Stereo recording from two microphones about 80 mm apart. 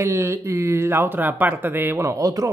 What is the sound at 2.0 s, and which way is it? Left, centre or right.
Speech, right.